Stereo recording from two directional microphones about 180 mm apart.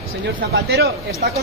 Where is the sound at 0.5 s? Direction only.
65° right (ahead or behind).